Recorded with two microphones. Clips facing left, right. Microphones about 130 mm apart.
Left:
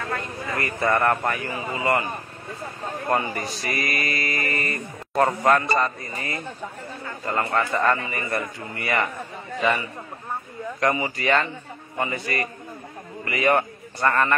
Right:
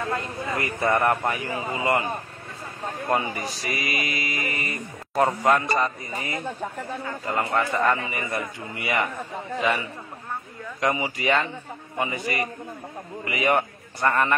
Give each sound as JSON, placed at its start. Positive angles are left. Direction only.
{"t": 0.5, "sound": "speech", "side_deg": -15}
{"t": 3.1, "sound": "speech", "side_deg": -10}
{"t": 10.8, "sound": "a man's voice", "side_deg": -15}